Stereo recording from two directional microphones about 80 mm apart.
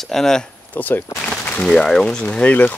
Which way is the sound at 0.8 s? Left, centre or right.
Left.